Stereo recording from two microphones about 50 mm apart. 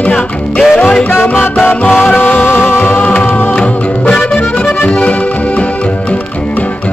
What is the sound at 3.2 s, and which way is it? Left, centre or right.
Music, left.